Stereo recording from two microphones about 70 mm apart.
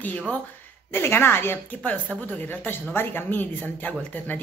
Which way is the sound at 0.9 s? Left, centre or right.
Left.